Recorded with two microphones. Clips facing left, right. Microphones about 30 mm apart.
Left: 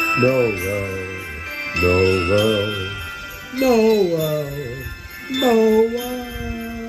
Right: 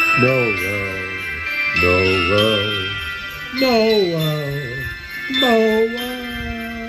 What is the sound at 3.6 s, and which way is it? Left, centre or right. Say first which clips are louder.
Speech: even; right.